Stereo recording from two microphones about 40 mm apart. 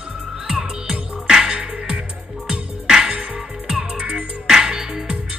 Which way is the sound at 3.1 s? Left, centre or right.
Right.